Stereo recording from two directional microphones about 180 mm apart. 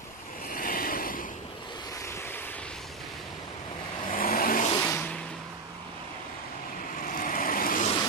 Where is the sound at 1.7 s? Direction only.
20° left (ahead or behind).